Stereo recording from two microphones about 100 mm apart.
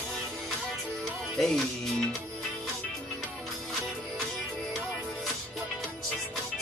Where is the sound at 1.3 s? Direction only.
5° left (ahead or behind).